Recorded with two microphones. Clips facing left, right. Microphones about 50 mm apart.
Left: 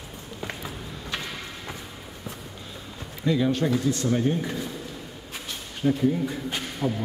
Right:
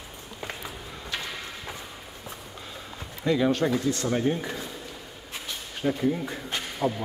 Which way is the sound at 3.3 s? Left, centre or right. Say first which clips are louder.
Even; right.